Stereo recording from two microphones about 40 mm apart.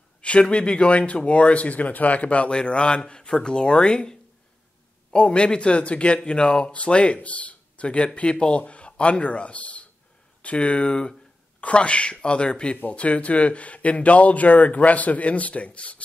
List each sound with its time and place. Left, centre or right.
0.2 s speech: left
2.5 s speech: left